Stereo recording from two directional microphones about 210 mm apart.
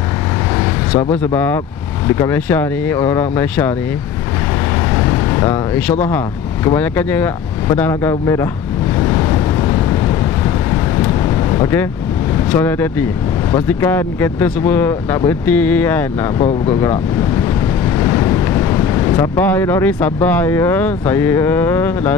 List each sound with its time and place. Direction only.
0.9 s speech: 10° left (ahead or behind)
5.3 s speech: 10° left (ahead or behind)
11.0 s vehicle: 15° left (ahead or behind)
12.5 s speech: 10° left (ahead or behind)
16.3 s speech: 25° left (ahead or behind)
18.0 s speech: 15° left (ahead or behind)